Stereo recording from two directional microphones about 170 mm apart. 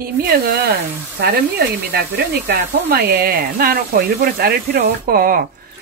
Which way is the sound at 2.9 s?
75° right (ahead or behind).